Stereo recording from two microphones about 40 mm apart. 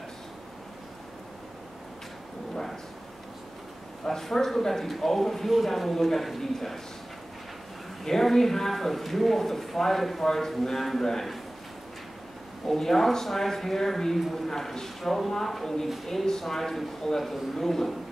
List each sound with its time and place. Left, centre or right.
4.0 s speech: centre
8.0 s speech: centre
12.6 s a man's voice: centre